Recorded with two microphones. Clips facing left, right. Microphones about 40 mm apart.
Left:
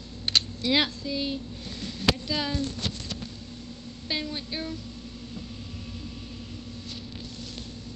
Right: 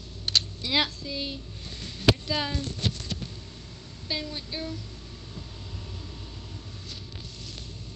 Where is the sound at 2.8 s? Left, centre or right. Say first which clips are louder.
Right 2 dB; right.